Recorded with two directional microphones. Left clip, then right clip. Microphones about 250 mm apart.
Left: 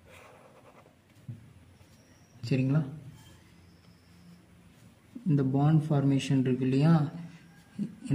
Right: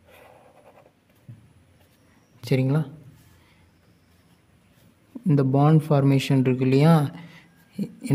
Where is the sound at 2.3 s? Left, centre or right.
Right.